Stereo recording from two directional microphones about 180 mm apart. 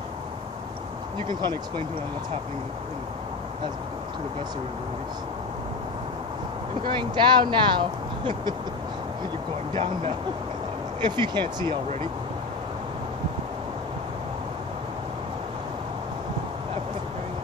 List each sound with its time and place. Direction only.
1.2 s speech: 25° right (ahead or behind)
6.9 s speech: 25° right (ahead or behind)
11.0 s speech: 25° right (ahead or behind)